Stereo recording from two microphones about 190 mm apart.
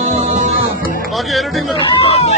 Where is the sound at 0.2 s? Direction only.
40° right (ahead or behind).